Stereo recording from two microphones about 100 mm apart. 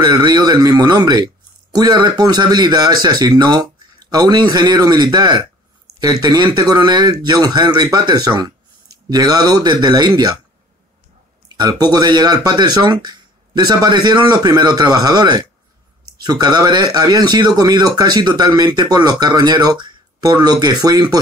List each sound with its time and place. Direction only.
0.0 s speech: 40° right (ahead or behind)
11.5 s speech: 45° right (ahead or behind)